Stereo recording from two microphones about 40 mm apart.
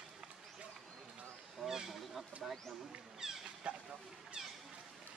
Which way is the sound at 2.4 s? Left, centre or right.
Centre.